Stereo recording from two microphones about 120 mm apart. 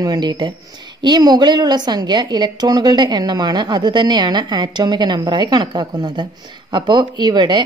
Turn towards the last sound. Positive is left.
turn(degrees=-35)  # may be behind; listen again after turning